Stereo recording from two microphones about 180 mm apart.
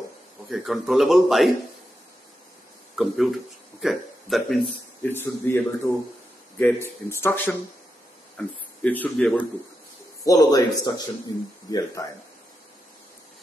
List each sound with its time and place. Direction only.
0.5 s a man's voice: centre (ahead or behind)
3.0 s a man's voice: centre (ahead or behind)
5.0 s speech: 15° left (ahead or behind)
10.2 s speech: 20° left (ahead or behind)